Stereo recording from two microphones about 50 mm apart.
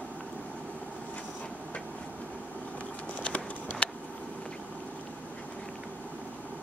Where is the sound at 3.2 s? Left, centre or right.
Left.